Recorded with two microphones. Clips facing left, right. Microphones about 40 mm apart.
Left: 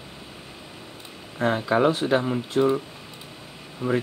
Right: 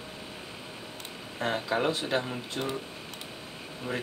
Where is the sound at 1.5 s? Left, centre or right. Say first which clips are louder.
Left 7 dB; centre.